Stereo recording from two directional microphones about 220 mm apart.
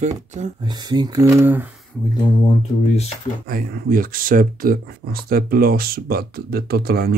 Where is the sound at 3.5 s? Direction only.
40° right (ahead or behind).